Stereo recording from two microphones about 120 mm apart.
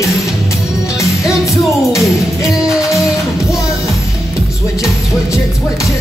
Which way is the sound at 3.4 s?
25° left (ahead or behind).